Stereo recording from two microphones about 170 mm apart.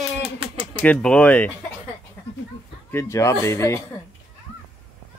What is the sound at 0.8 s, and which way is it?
Speech, 5° left (ahead or behind).